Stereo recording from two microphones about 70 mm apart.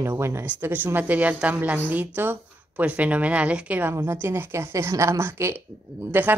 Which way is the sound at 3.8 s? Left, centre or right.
Right.